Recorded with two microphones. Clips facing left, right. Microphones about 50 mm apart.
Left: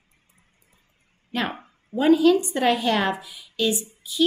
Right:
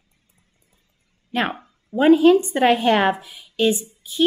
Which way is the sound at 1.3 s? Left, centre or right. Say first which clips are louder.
Right 4 dB; right.